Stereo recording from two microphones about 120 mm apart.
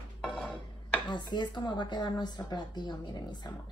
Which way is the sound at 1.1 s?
40° left (ahead or behind).